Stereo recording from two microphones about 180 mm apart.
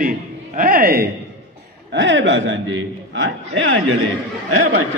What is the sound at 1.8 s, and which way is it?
A man's voice, 85° right.